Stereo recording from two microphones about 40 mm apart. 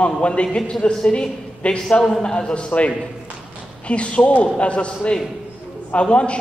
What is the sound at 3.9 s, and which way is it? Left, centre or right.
A man's voice, left.